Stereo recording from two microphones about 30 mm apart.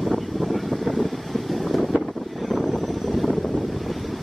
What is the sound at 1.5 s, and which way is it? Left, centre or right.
Wind noise, centre.